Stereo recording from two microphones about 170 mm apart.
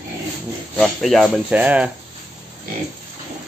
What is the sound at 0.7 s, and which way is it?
Speech, centre (ahead or behind).